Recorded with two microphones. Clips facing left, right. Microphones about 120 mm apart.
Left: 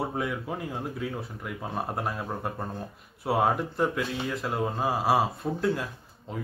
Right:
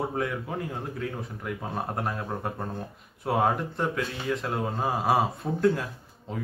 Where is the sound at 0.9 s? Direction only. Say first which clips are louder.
Even; 10° left (ahead or behind).